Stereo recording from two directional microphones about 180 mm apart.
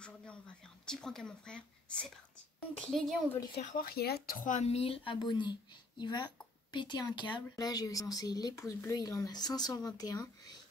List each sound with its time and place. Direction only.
0.0 s a child's voice: 5° left (ahead or behind)
3.5 s speech: 55° left (ahead or behind); by 10.6 s 20° left (ahead or behind)